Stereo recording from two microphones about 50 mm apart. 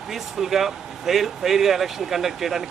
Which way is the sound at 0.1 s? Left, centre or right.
Centre.